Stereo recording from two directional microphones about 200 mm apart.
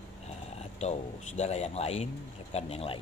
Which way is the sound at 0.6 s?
35° left (ahead or behind).